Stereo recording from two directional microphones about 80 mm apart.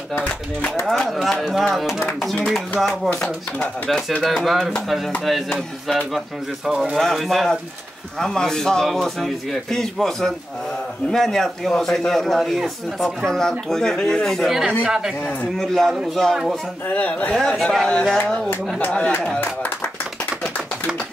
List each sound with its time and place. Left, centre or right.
0.1 s speech: centre
1.0 s a man's voice: centre
3.1 s speech: centre
3.9 s a man's voice: centre
15.5 s a man's voice: centre
16.9 s speech: centre
17.4 s speech: centre